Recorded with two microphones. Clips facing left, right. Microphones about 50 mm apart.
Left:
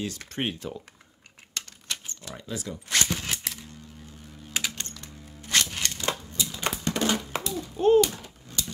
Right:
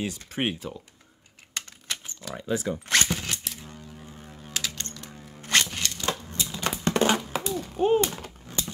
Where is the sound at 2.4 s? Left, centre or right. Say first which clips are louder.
Right 8 dB; right.